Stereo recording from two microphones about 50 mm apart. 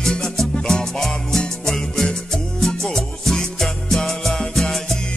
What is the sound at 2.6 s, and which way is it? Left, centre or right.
Music, centre.